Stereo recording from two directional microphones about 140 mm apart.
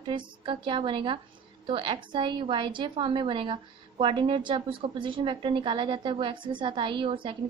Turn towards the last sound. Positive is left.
turn(degrees=-35)  # may be behind; listen again after turning